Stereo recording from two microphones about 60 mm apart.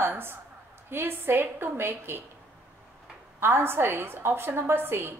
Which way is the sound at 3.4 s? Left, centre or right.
Right.